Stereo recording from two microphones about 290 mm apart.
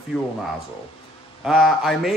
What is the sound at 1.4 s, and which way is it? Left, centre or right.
Speech, centre.